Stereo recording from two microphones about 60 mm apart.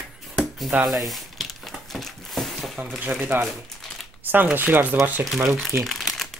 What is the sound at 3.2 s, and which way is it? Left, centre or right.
Speech, right.